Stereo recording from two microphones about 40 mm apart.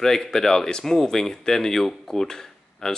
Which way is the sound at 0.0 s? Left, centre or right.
Centre.